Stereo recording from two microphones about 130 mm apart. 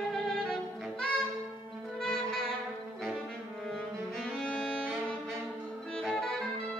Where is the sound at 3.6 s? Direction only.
5° left (ahead or behind).